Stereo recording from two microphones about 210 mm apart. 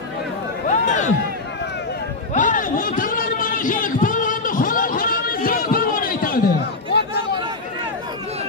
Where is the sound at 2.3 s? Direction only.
40° left (ahead or behind).